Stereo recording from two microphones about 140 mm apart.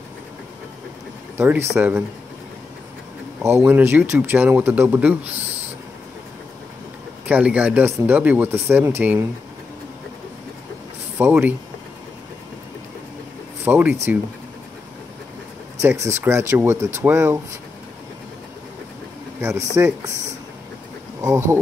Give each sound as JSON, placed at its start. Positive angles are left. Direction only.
{"t": 1.4, "sound": "speech", "side_deg": -15}
{"t": 3.6, "sound": "speech", "side_deg": -15}
{"t": 7.2, "sound": "speech", "side_deg": -10}
{"t": 11.1, "sound": "speech", "side_deg": -10}
{"t": 13.7, "sound": "speech", "side_deg": -10}
{"t": 15.8, "sound": "speech", "side_deg": -20}
{"t": 19.4, "sound": "speech", "side_deg": -20}